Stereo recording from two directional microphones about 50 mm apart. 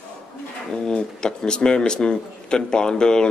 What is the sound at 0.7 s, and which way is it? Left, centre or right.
A man's voice, centre.